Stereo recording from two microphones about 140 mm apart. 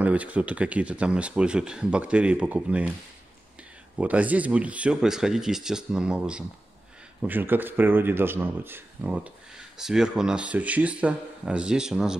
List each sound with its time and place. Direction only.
0.0 s speech: 10° right (ahead or behind)
4.0 s speech: 10° right (ahead or behind)